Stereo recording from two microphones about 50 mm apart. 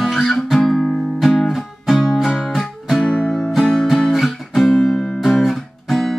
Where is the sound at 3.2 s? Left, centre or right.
Centre.